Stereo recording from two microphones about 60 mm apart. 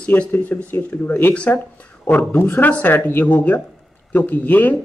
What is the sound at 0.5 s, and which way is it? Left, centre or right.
A man's voice, left.